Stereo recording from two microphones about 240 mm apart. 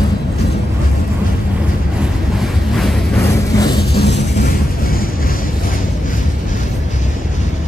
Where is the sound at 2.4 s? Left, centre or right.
Centre.